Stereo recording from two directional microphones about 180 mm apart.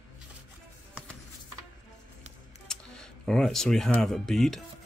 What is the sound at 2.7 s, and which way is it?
Speech, 5° left (ahead or behind).